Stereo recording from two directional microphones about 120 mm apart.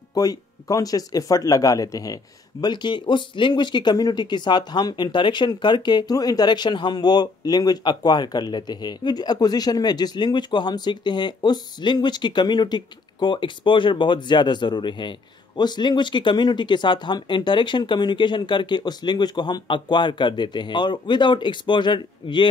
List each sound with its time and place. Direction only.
0.1 s speech: 30° left (ahead or behind)
2.6 s speech: 40° left (ahead or behind)